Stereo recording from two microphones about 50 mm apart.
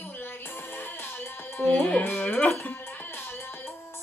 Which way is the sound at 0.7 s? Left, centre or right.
Left.